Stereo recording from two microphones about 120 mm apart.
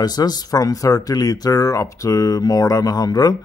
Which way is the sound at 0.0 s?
35° left (ahead or behind).